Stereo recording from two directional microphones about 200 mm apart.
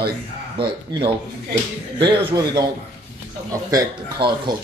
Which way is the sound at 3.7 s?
20° right (ahead or behind).